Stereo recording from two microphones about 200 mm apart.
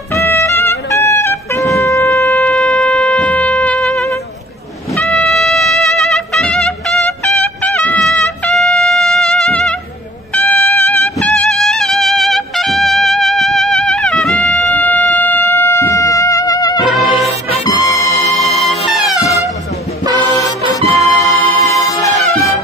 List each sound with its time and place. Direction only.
0.1 s music: 10° left (ahead or behind)
2.3 s shofar: centre (ahead or behind)
4.9 s trumpet: 5° left (ahead or behind)
10.3 s music: 10° left (ahead or behind)
20.1 s music: 15° left (ahead or behind)